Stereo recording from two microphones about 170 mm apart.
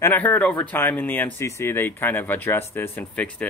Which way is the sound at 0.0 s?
10° left (ahead or behind).